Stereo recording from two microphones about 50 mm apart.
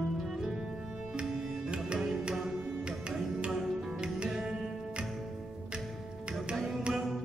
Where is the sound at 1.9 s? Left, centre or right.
Centre.